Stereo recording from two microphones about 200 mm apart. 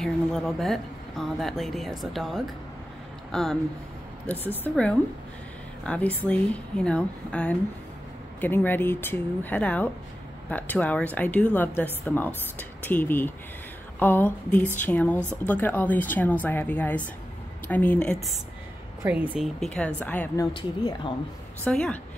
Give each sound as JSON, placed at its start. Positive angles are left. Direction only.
{"t": 0.0, "sound": "speech", "side_deg": 0}
{"t": 19.0, "sound": "speech", "side_deg": -5}
{"t": 20.5, "sound": "speech", "side_deg": 25}
{"t": 21.6, "sound": "speech", "side_deg": 5}